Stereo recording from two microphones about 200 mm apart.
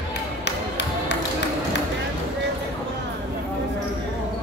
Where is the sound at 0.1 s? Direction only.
60° left (ahead or behind).